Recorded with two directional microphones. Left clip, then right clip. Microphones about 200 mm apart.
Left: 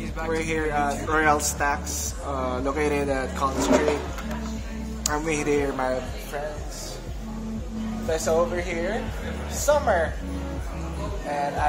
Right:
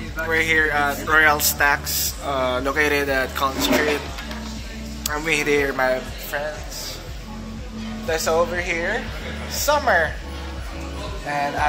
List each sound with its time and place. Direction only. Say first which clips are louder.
0.3 s speech: right 8 dB; 5° left (ahead or behind)
5.0 s speech: right 4 dB; 5° left (ahead or behind)
8.1 s a woman's voice: right 3 dB; 15° right (ahead or behind)